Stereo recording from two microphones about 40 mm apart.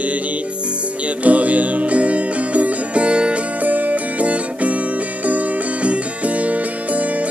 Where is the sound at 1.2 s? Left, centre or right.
Right.